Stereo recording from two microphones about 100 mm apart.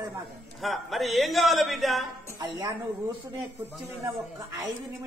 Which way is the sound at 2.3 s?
40° right (ahead or behind).